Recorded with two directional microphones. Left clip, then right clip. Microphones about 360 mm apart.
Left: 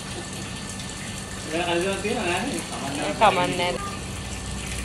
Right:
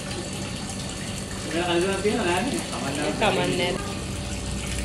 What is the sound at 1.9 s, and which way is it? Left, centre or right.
A woman's voice, centre.